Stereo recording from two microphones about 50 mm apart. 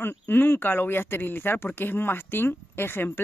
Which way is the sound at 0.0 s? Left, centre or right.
Left.